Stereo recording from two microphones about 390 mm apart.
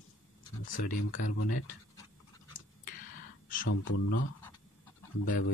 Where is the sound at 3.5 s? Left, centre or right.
Left.